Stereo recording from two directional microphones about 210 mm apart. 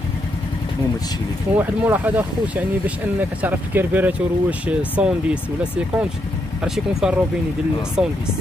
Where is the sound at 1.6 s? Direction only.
10° right (ahead or behind).